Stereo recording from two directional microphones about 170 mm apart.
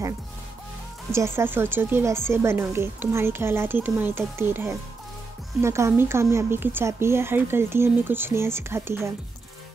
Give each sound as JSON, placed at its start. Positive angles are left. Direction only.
{"t": 1.1, "sound": "a woman's voice", "side_deg": -15}